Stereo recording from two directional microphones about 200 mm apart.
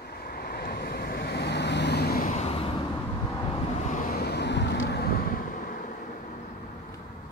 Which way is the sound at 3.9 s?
45° left (ahead or behind).